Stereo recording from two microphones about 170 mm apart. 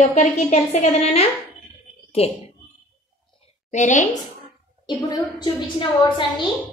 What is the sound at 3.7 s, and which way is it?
Speech, 45° left (ahead or behind).